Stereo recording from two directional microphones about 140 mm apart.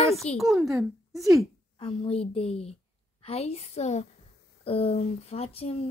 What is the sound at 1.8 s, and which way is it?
Speech, 45° left (ahead or behind).